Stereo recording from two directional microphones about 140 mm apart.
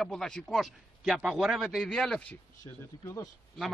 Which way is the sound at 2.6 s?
20° left (ahead or behind).